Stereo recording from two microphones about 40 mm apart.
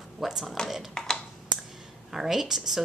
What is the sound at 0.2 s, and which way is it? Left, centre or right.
Speech, centre.